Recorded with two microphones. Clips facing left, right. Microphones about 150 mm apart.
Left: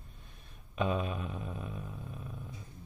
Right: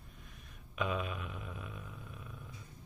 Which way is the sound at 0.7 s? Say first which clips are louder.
Left 4 dB; 30° left (ahead or behind).